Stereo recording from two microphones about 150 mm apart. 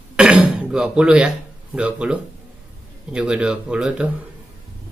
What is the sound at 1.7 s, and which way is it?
Speech, 5° right (ahead or behind).